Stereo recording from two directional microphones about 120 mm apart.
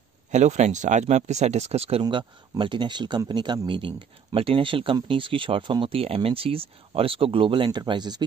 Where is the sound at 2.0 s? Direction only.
45° right (ahead or behind).